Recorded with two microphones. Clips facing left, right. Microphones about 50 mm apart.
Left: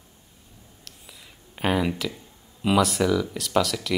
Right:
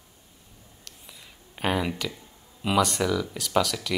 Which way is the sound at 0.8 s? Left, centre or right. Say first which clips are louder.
Even; centre.